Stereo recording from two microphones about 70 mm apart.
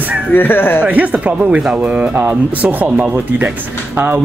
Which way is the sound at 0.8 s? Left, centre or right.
Right.